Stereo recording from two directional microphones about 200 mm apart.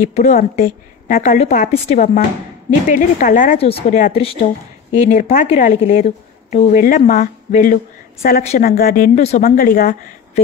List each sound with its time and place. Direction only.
0.0 s a woman's voice: 40° left (ahead or behind)
9.6 s speech: 45° left (ahead or behind)